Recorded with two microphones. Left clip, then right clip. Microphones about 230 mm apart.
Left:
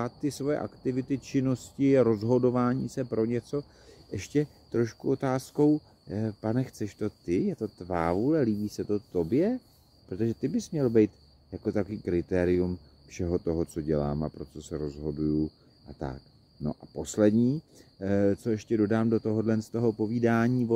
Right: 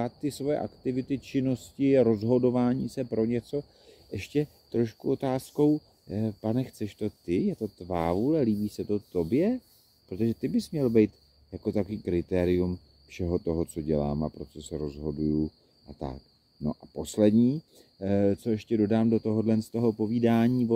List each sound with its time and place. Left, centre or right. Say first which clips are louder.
0.0 s speech: even; centre